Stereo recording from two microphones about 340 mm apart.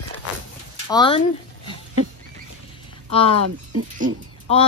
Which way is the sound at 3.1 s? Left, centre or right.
Centre.